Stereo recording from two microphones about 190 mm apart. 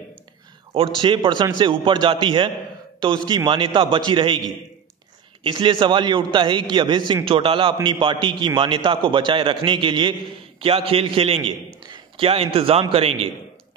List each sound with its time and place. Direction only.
0.7 s a man's voice: 25° right (ahead or behind)
5.4 s a man's voice: 25° right (ahead or behind)